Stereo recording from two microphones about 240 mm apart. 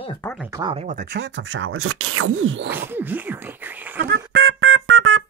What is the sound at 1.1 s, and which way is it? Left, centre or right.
Speech, right.